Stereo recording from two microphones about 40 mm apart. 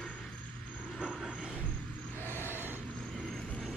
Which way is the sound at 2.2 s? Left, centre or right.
Left.